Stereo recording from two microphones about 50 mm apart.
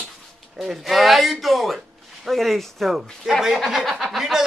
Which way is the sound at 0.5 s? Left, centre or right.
Centre.